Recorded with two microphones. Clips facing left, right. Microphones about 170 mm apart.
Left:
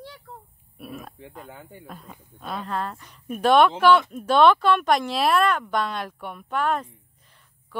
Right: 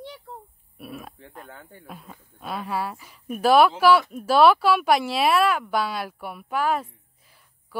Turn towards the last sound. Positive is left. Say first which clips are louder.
# right 1 dB
turn(degrees=-5)  # may be behind; listen again after turning